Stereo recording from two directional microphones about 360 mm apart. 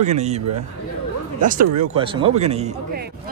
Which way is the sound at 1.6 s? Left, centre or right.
Right.